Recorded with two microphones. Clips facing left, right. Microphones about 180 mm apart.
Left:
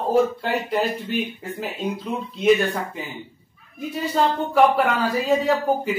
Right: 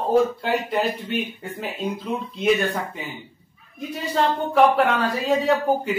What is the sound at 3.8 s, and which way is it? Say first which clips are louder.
Speech: left 1 dB; centre (ahead or behind).